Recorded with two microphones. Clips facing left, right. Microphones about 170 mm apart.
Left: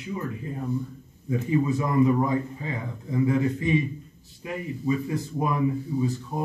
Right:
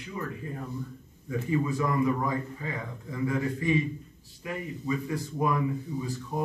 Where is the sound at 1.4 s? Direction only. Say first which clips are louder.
Left 3 dB; 25° left (ahead or behind).